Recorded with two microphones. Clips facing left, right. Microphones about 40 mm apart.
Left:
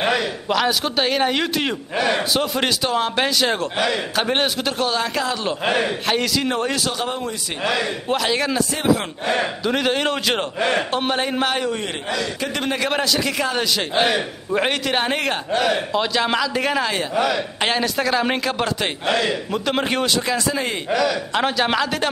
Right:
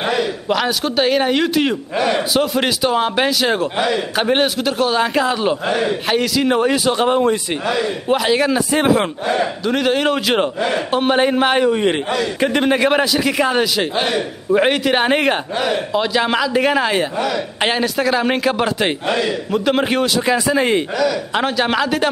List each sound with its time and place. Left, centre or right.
0.0 s a man's voice: centre
4.9 s a man's voice: centre
5.9 s a man's voice: centre
6.9 s a man's voice: right
7.7 s a man's voice: centre
8.7 s speech: right
9.4 s a man's voice: centre
11.1 s a man's voice: centre
13.9 s a man's voice: centre
15.6 s a man's voice: centre
20.9 s a man's voice: centre